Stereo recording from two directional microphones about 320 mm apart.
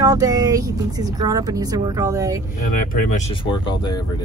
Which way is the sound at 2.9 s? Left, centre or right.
Left.